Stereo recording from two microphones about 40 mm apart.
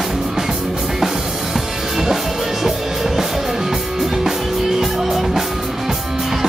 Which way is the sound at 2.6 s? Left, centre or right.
Centre.